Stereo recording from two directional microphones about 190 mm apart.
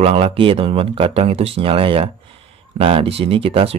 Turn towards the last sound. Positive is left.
turn(degrees=-30)  # may be behind; listen again after turning